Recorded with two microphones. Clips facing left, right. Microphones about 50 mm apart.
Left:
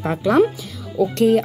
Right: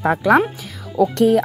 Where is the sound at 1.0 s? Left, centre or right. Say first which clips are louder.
Right 3 dB; right.